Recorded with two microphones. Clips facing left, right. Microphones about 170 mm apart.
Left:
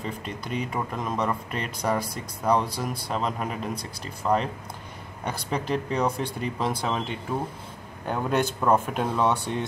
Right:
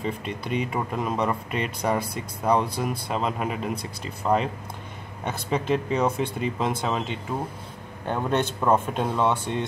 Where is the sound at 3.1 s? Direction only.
5° right (ahead or behind).